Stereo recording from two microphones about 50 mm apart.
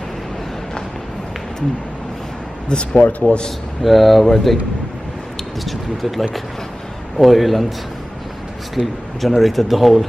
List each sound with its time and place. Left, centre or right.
2.7 s speech: centre
3.1 s a man's voice: left
3.8 s speech: centre
5.6 s speech: centre
8.7 s speech: centre